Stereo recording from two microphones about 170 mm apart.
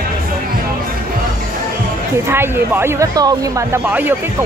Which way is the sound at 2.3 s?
15° right (ahead or behind).